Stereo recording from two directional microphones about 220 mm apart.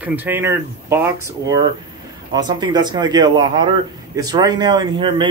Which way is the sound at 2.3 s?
20° right (ahead or behind).